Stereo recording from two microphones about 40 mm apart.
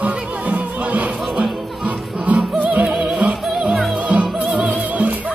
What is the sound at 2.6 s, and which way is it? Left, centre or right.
Music, right.